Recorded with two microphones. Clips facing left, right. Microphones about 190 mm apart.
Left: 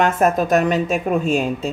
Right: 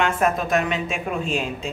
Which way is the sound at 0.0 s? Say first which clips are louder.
Left 5 dB; 40° left (ahead or behind).